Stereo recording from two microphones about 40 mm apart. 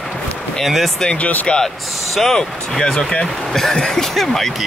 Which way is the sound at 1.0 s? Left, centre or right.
Left.